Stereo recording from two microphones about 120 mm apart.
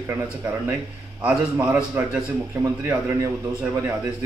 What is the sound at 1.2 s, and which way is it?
A man's voice, 10° right (ahead or behind).